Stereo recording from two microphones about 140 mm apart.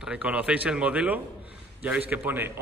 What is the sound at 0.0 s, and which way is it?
Speech, 10° right (ahead or behind).